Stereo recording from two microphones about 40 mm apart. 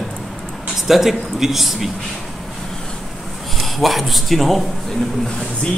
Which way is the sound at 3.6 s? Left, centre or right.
Centre.